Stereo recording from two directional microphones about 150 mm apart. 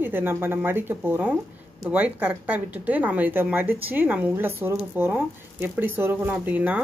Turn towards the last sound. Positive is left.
turn(degrees=-10)  # may be behind; listen again after turning